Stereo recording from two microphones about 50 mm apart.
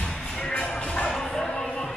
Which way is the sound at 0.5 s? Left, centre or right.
Left.